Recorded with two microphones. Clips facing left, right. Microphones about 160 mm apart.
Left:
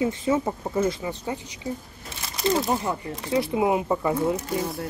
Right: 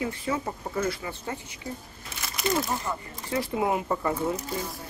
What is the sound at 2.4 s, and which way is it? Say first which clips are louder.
Speech: left 4 dB; 30° left (ahead or behind).